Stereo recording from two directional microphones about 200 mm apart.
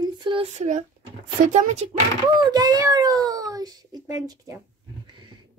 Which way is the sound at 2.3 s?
20° right (ahead or behind).